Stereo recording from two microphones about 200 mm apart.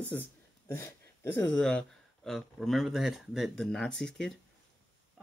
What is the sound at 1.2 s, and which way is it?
Speech, 5° left (ahead or behind).